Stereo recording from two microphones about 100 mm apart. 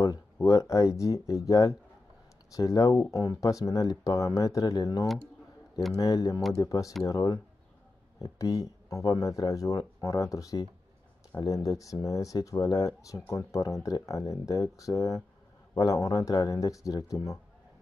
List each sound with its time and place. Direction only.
0.0 s speech: 35° left (ahead or behind)